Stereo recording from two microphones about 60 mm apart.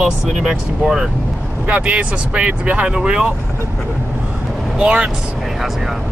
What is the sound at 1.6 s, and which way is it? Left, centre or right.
Speech, right.